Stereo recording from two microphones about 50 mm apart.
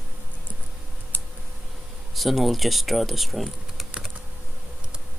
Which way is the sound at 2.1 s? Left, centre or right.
Centre.